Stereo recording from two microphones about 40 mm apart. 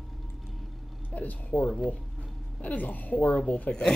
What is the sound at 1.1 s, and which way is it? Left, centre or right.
A woman's voice, left.